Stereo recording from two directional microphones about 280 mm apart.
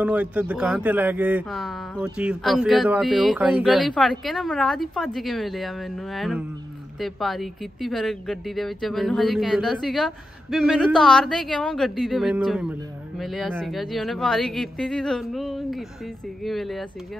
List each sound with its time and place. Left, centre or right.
0.0 s speech: centre